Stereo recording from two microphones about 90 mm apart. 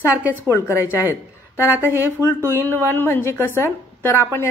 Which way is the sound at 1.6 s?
20° right (ahead or behind).